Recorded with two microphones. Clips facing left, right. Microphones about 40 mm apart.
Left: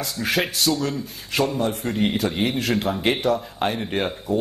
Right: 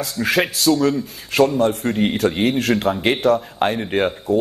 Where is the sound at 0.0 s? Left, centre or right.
Right.